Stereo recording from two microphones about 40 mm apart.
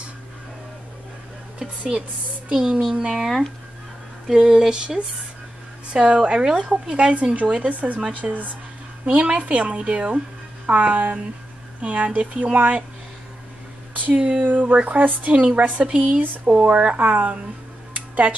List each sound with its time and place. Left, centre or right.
2.5 s a child's voice: centre
4.3 s a child's voice: centre; by 8.5 s right
9.0 s a woman's voice: right
13.9 s a woman's voice: right
15.8 s a child's voice: centre
16.5 s a woman's voice: right
17.9 s a sound: right